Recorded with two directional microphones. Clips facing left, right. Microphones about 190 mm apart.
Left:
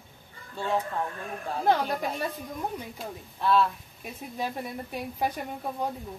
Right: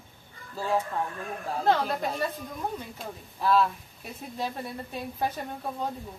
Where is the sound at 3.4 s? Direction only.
5° right (ahead or behind).